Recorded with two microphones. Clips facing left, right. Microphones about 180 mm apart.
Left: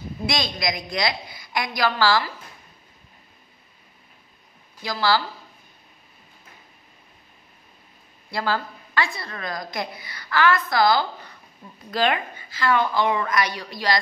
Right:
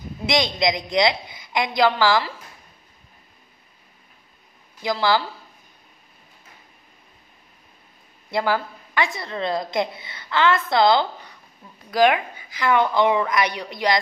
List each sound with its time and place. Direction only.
0.3 s a woman's voice: 20° right (ahead or behind)
4.8 s a woman's voice: 20° right (ahead or behind)
8.3 s a woman's voice: 15° right (ahead or behind)
11.9 s a woman's voice: 10° right (ahead or behind)